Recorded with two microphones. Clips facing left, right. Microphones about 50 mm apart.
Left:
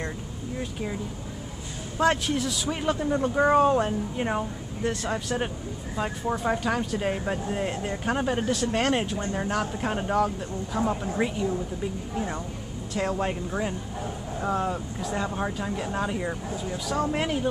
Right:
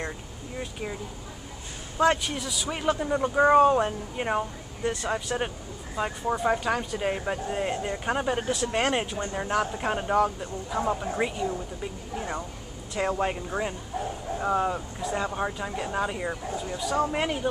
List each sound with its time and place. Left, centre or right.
2.0 s speech: centre